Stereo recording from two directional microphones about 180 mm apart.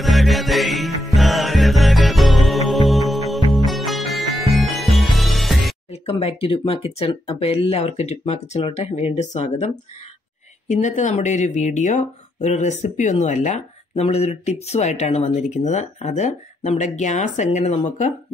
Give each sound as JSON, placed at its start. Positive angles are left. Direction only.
{"t": 0.0, "sound": "music", "side_deg": 0}
{"t": 5.9, "sound": "speech", "side_deg": 35}
{"t": 10.7, "sound": "speech", "side_deg": 40}